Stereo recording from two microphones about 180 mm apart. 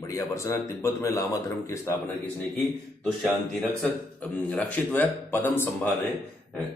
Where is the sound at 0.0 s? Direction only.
20° left (ahead or behind).